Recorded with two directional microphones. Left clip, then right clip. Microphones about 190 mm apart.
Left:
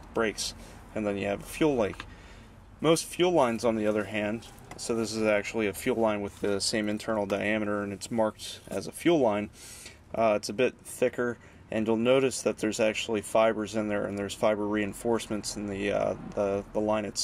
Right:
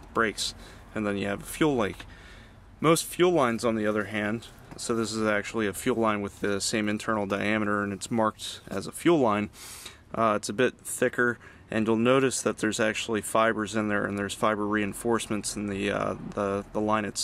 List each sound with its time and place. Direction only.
0.1 s speech: 30° right (ahead or behind)